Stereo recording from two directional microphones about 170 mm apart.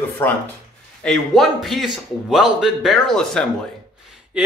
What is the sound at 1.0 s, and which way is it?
A man's voice, centre (ahead or behind).